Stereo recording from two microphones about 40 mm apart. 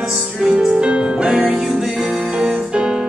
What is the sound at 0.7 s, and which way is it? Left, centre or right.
Music, right.